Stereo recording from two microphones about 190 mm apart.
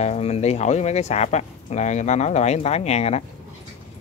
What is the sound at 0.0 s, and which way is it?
Speech, 35° left (ahead or behind).